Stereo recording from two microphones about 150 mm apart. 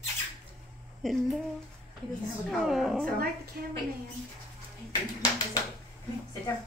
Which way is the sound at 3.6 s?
90° right.